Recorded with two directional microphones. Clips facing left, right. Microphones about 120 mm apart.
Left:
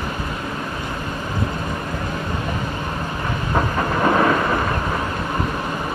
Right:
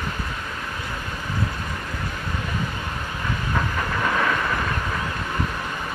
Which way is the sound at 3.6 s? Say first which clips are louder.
Left 7 dB; 40° left (ahead or behind).